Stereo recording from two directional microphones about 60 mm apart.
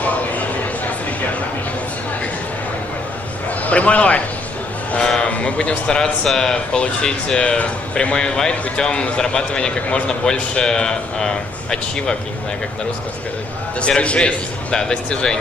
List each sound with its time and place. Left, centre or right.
0.0 s a sound: left
3.6 s a man's voice: left
13.7 s speech: centre